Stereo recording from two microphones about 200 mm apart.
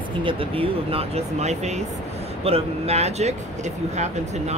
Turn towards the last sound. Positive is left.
turn(degrees=-35)  # may be behind; listen again after turning